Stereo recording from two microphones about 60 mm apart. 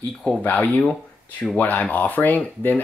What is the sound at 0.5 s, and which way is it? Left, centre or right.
Speech, left.